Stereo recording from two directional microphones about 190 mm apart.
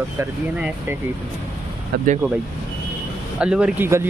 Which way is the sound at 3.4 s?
5° right (ahead or behind).